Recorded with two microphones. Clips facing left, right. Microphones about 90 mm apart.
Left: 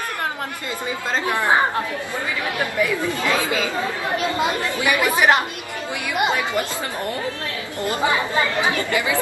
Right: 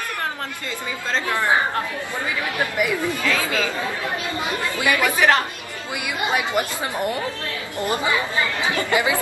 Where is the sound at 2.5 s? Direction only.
15° right (ahead or behind).